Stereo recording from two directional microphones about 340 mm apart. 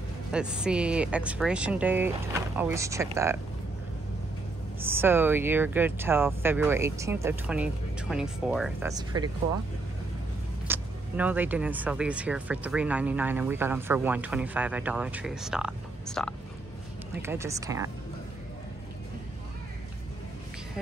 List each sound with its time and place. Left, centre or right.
0.3 s speech: centre
4.7 s speech: centre
10.7 s speech: centre